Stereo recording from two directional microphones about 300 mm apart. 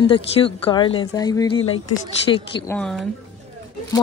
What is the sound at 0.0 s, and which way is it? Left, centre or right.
Speech, centre.